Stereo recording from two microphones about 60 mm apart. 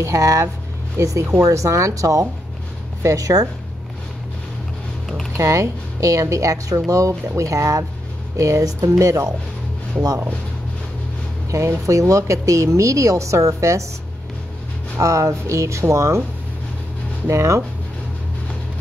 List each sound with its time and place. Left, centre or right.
0.0 s speech: right
5.0 s a sound: centre
5.4 s speech: right
11.5 s speech: right
15.0 s speech: right
17.3 s speech: right